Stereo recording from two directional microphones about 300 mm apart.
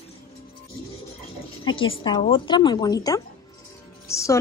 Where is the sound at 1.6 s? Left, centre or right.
Centre.